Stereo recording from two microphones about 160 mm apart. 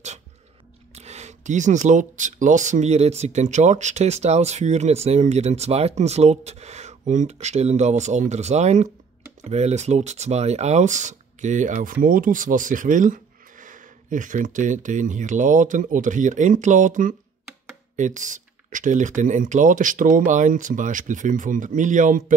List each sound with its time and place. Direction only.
0.9 s speech: 45° right (ahead or behind)